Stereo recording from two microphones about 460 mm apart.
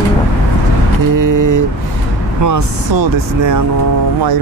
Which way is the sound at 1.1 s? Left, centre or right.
Right.